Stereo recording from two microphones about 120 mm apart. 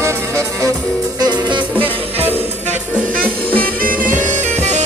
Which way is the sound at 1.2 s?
40° right (ahead or behind).